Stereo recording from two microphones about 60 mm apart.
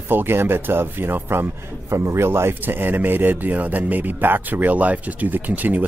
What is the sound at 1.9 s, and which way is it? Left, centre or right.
A man's voice, right.